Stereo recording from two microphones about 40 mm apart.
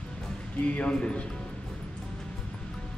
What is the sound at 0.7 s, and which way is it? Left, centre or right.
Speech, left.